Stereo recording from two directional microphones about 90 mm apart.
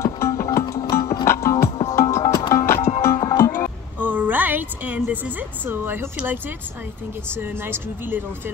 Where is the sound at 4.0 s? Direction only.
20° right (ahead or behind).